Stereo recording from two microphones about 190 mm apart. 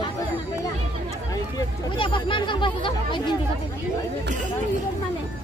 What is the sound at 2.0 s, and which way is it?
Speech, 25° left (ahead or behind).